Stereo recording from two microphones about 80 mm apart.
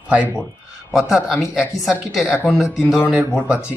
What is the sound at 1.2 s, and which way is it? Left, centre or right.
Speech, centre.